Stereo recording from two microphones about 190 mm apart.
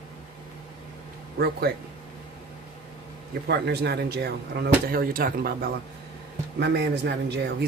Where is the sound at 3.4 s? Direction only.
60° right (ahead or behind).